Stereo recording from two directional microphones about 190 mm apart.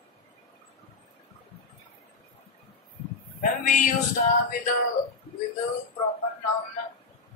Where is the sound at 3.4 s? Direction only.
45° left (ahead or behind).